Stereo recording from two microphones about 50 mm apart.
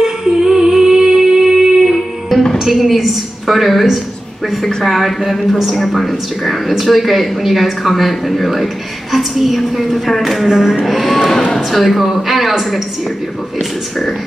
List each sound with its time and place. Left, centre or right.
0.0 s music: centre
2.6 s speech: centre